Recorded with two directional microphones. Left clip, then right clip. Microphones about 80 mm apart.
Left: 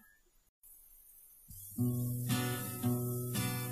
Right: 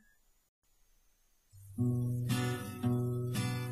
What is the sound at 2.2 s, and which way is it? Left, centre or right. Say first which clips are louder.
Music: left 1 dB; left.